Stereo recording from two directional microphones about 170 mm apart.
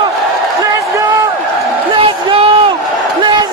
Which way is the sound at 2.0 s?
30° right (ahead or behind).